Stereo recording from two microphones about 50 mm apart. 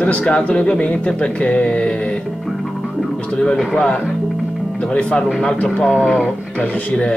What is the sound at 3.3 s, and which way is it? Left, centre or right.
Speech, centre.